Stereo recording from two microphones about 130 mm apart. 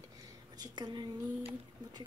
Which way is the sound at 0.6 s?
30° right (ahead or behind).